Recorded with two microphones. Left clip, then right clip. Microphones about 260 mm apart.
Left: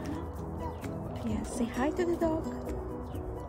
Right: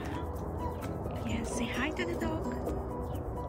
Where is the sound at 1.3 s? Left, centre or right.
Centre.